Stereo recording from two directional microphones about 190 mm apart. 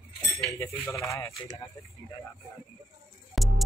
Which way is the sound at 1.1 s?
15° left (ahead or behind).